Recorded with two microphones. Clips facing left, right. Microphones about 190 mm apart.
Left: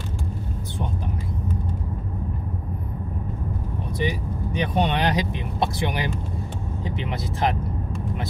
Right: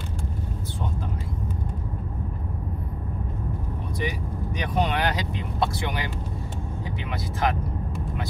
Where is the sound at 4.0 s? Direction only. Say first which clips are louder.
Left 4 dB; 25° left (ahead or behind).